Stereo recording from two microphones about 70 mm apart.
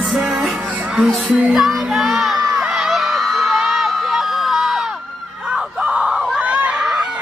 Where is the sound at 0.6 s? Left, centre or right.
Right.